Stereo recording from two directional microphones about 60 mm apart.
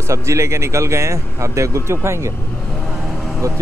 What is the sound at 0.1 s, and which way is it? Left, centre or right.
Speech, right.